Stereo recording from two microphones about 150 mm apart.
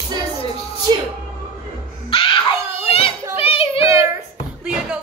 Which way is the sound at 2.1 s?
35° left (ahead or behind).